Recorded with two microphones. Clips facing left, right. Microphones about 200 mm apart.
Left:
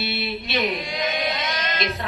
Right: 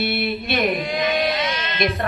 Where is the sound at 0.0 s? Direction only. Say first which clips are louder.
Right 5 dB; 55° right (ahead or behind).